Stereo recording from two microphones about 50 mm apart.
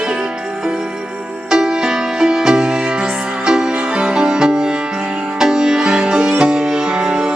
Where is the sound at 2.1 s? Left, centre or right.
Centre.